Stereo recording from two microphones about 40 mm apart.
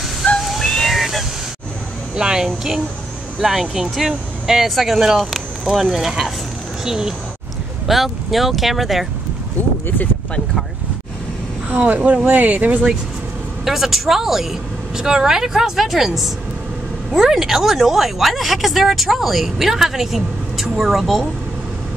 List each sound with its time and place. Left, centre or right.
0.4 s a sound: centre
0.7 s a sound: centre
0.9 s a sound: centre
2.1 s a woman's voice: centre
3.3 s speech: centre
7.8 s speech: centre
9.6 s speech: left
11.7 s speech: right
13.7 s speech: centre
17.1 s speech: centre